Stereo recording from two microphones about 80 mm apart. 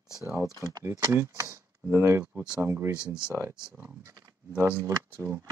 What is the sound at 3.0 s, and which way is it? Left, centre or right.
Speech, centre.